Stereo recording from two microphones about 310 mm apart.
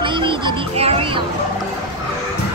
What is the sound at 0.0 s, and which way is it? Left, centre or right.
A child's voice, centre.